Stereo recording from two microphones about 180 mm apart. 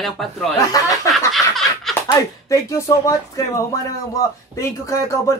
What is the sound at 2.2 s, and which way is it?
Speech, 20° left (ahead or behind).